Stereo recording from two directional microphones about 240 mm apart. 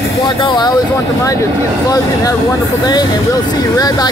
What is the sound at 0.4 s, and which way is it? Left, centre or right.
Speech, centre.